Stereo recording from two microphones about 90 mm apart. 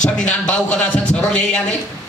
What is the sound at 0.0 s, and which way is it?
A man's voice, 10° left (ahead or behind).